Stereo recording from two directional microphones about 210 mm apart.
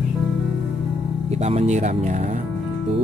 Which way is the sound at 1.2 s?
30° right (ahead or behind).